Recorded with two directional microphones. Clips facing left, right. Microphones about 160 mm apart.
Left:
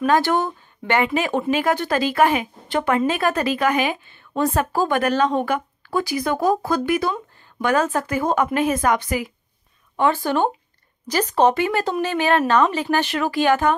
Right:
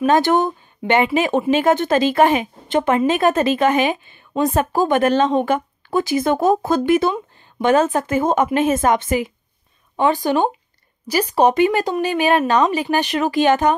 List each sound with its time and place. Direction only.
0.0 s speech: 20° right (ahead or behind)